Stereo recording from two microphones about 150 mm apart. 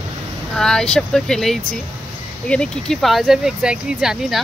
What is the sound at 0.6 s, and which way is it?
Speech, 5° left (ahead or behind).